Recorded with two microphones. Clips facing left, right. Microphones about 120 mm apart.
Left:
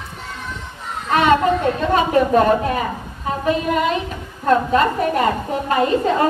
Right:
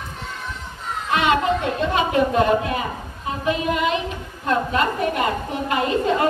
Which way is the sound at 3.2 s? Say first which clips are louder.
Left 3 dB; 40° left (ahead or behind).